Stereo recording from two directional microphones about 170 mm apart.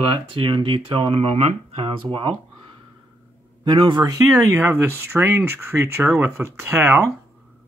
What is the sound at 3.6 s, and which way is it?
Speech, 25° right (ahead or behind).